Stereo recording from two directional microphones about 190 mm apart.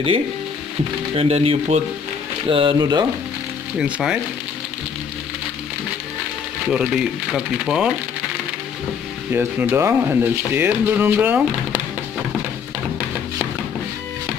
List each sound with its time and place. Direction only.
1.1 s speech: 35° right (ahead or behind)
3.7 s speech: 5° right (ahead or behind)
6.7 s speech: 5° right (ahead or behind)
9.3 s speech: 10° right (ahead or behind)